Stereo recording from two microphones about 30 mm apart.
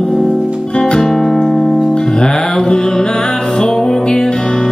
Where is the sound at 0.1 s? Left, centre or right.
Centre.